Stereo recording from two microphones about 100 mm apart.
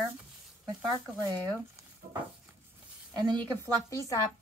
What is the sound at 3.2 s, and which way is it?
Speech, 50° right (ahead or behind).